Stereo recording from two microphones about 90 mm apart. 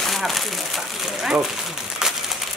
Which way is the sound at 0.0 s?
Centre (ahead or behind).